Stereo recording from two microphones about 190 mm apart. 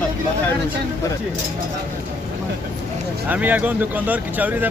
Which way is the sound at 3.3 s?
10° right (ahead or behind).